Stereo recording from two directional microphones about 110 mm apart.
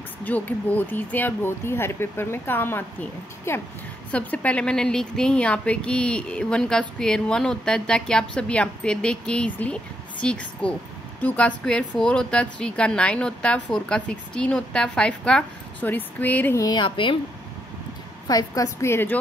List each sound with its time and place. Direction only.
0.2 s a woman's voice: 15° left (ahead or behind)
16.5 s a woman's voice: 35° left (ahead or behind)
16.8 s a woman's voice: 50° left (ahead or behind)
18.3 s speech: 30° left (ahead or behind)